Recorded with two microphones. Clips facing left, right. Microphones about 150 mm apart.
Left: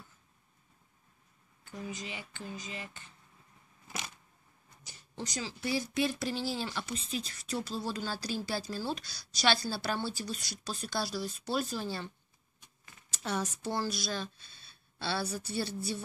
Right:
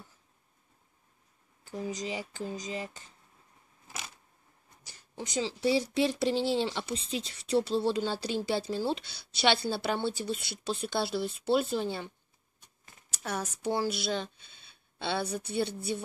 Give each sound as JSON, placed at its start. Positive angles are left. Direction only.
{"t": 1.6, "sound": "speech", "side_deg": -30}
{"t": 5.2, "sound": "speech", "side_deg": -25}
{"t": 13.1, "sound": "a woman's voice", "side_deg": -10}